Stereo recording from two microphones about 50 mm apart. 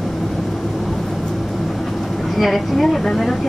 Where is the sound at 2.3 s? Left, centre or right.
Centre.